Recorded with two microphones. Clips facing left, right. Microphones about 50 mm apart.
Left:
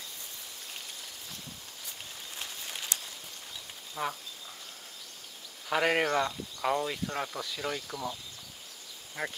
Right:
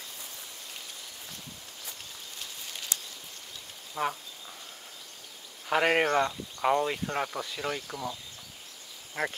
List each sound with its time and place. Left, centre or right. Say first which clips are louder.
3.9 s speech: right 3 dB; centre
5.7 s speech: right 2 dB; centre
9.2 s speech: right 4 dB; right